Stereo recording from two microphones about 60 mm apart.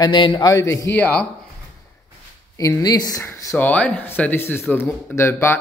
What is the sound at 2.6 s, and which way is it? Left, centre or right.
Speech, left.